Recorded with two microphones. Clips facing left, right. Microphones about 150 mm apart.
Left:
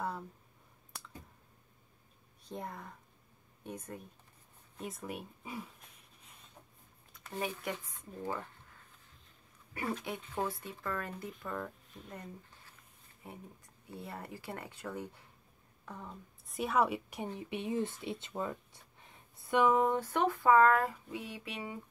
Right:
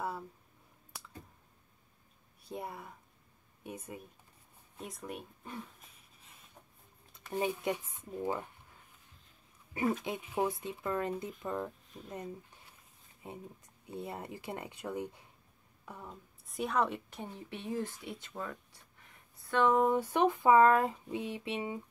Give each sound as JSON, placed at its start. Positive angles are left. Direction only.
{"t": 2.4, "sound": "speech", "side_deg": -10}
{"t": 4.7, "sound": "speech", "side_deg": 0}
{"t": 7.2, "sound": "speech", "side_deg": -20}
{"t": 10.0, "sound": "a woman's voice", "side_deg": -15}
{"t": 19.6, "sound": "speech", "side_deg": 0}
{"t": 20.0, "sound": "speech", "side_deg": -15}